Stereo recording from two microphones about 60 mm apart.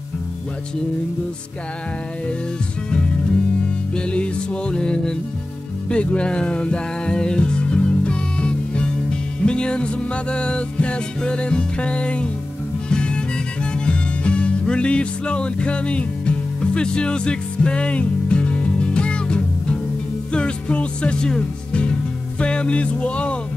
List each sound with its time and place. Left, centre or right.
3.9 s music: centre
22.4 s speech: centre